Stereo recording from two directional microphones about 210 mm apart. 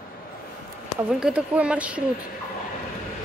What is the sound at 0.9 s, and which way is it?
Speech, 5° right (ahead or behind).